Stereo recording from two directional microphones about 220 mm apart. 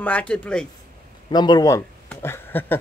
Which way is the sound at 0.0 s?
5° left (ahead or behind).